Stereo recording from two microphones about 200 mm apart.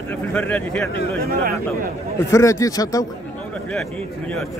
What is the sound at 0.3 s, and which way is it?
Speech, 5° left (ahead or behind).